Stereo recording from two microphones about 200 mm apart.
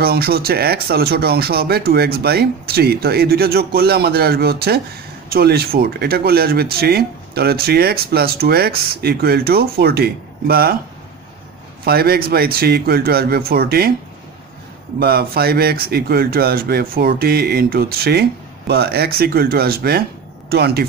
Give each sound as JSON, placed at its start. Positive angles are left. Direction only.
{"t": 0.0, "sound": "speech", "side_deg": -50}
{"t": 11.8, "sound": "speech", "side_deg": -50}
{"t": 15.0, "sound": "speech", "side_deg": -50}